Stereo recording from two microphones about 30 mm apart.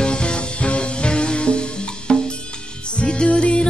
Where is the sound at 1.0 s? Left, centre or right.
Left.